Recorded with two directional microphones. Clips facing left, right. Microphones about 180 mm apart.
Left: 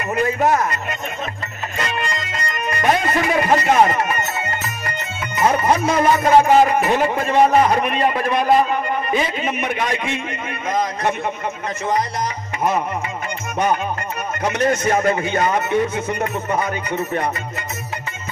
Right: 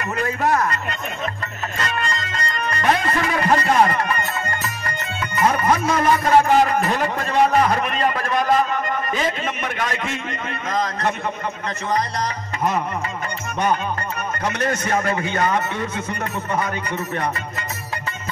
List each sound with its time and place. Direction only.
0.1 s a man's voice: 20° left (ahead or behind)
1.8 s music: 15° left (ahead or behind)
5.6 s a man's voice: 10° left (ahead or behind)
14.4 s speech: 25° left (ahead or behind)